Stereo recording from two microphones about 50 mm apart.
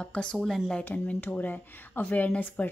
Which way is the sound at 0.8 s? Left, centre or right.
Left.